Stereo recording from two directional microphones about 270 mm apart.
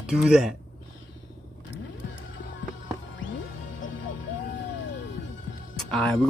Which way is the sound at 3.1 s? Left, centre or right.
Left.